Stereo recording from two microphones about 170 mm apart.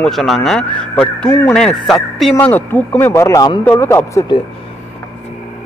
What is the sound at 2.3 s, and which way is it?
Speech, 10° left (ahead or behind).